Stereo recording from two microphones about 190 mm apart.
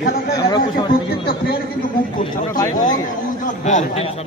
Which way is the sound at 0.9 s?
50° left (ahead or behind).